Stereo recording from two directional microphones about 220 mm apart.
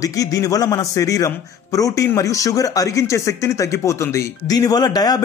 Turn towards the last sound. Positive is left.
turn(degrees=15)  # may be behind; listen again after turning